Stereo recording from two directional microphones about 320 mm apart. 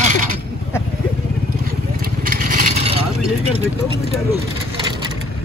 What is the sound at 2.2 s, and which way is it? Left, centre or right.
Vehicle, right.